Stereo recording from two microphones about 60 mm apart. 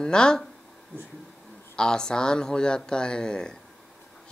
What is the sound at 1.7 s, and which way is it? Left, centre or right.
Speech, centre.